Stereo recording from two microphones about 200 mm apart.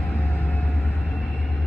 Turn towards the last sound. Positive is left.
turn(degrees=5)  # may be behind; listen again after turning